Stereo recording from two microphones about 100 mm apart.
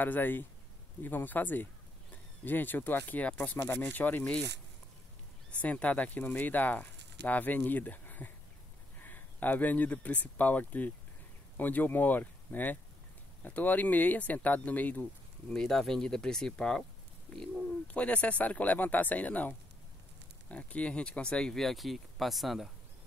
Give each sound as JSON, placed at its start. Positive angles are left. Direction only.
{"t": 0.0, "sound": "speech", "side_deg": 20}
{"t": 5.5, "sound": "speech", "side_deg": 15}
{"t": 15.5, "sound": "speech", "side_deg": 5}